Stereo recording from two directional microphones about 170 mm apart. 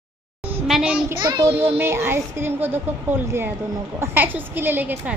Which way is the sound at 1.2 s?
25° right (ahead or behind).